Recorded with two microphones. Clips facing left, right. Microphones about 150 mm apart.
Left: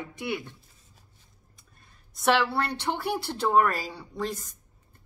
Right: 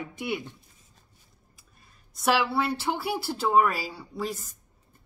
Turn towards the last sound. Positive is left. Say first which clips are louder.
# even
turn(degrees=-5)  # may be behind; listen again after turning